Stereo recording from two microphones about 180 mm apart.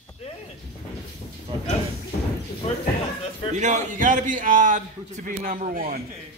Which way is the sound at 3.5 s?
45° right (ahead or behind).